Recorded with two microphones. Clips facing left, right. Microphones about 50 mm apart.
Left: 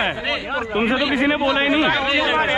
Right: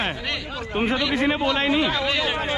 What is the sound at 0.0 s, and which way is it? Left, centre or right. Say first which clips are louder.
Speech: left 5 dB; left.